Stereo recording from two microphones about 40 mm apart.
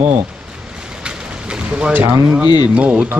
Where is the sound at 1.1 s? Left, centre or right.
Right.